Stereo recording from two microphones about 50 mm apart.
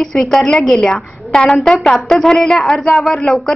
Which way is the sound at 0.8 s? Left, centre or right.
Left.